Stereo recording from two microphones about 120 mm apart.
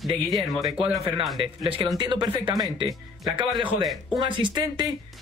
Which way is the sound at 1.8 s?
35° right (ahead or behind).